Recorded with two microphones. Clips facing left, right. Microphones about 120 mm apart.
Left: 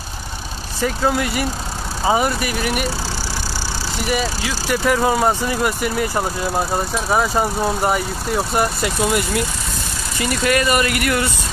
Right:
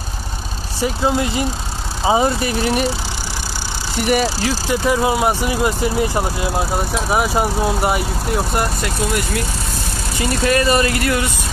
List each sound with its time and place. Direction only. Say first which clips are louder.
0.8 s speech: right 1 dB; 20° right (ahead or behind)
4.6 s speech: left 1 dB; 20° right (ahead or behind)
5.0 s speech: even; 10° right (ahead or behind)
6.4 s speech: even; 10° right (ahead or behind)
8.5 s speech: left 1 dB; 5° left (ahead or behind)
10.2 s speech: right 2 dB; 25° right (ahead or behind)